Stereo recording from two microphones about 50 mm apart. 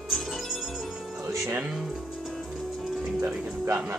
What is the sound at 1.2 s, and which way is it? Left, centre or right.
Music, right.